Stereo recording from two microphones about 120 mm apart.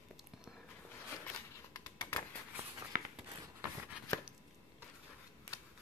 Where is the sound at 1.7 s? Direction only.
20° left (ahead or behind).